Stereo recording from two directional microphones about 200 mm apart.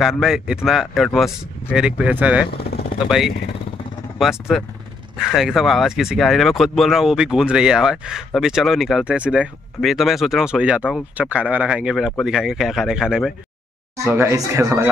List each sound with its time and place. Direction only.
0.2 s speech: 5° right (ahead or behind)
2.4 s vehicle: 50° left (ahead or behind)
3.1 s speech: centre (ahead or behind)
13.9 s speech: 15° right (ahead or behind)